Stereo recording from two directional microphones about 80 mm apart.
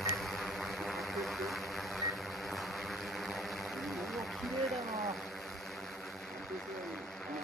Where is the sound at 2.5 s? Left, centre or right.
Centre.